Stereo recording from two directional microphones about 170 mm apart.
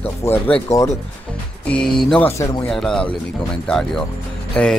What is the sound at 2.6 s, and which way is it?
Speech, 5° left (ahead or behind).